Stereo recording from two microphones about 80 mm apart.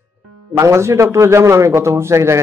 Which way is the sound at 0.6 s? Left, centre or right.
Right.